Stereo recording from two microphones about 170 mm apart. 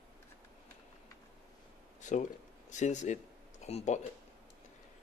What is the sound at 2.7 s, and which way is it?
Speech, 45° left (ahead or behind).